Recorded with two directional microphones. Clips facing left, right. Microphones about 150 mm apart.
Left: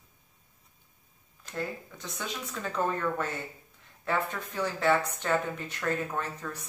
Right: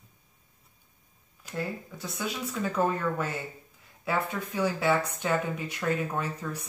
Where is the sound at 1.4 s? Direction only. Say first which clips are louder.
Right 1 dB; 10° right (ahead or behind).